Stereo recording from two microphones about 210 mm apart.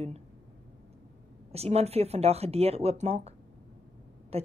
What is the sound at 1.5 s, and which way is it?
A woman's voice, 30° right (ahead or behind).